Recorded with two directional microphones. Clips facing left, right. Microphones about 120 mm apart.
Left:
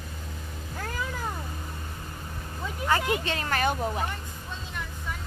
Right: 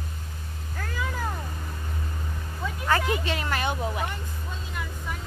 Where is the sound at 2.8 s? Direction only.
20° left (ahead or behind).